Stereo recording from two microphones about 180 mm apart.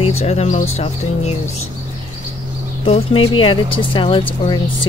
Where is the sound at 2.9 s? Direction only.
30° left (ahead or behind).